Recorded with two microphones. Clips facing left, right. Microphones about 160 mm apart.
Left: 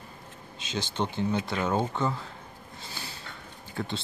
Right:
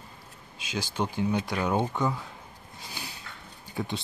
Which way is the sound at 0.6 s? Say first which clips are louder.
Even; 10° right (ahead or behind).